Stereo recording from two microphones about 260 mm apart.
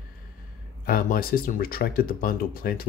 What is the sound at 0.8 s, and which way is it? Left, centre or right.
Speech, left.